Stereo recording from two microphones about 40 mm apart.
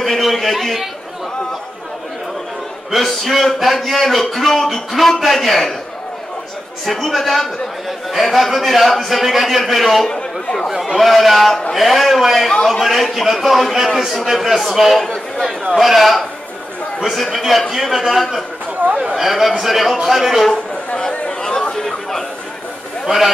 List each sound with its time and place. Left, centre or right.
0.0 s a man's voice: centre
2.9 s a man's voice: centre
6.9 s a man's voice: centre
10.0 s a man's voice: centre
10.7 s a man's voice: centre
18.8 s a man's voice: right
19.1 s a man's voice: centre
20.9 s a sound: left
23.0 s a man's voice: centre